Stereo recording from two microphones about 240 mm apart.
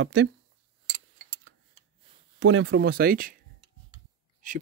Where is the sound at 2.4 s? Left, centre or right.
Right.